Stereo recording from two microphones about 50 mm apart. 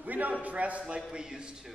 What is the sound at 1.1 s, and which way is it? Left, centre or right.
Speech, centre.